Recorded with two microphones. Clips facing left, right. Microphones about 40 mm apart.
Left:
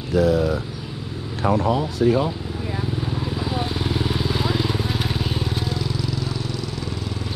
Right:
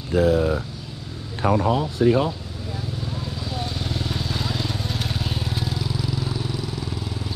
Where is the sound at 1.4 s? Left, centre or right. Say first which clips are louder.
Even; centre.